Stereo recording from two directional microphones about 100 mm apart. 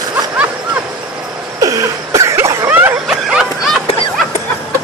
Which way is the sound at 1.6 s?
35° right (ahead or behind).